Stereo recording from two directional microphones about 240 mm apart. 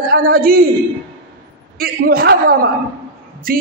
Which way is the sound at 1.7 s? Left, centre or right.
Right.